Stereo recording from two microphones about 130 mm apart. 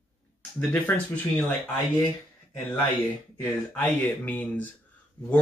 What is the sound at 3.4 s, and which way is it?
Speech, 10° left (ahead or behind).